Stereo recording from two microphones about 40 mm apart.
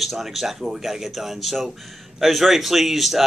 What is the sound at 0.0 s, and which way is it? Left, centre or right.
Speech, centre.